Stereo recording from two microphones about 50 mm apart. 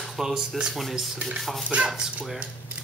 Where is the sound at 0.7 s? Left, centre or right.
Centre.